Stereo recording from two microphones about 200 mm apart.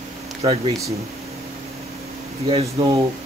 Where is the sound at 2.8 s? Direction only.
25° right (ahead or behind).